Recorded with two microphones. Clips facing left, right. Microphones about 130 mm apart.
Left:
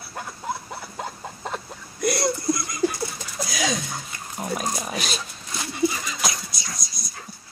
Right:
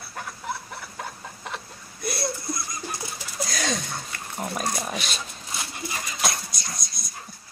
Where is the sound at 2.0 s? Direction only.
90° left.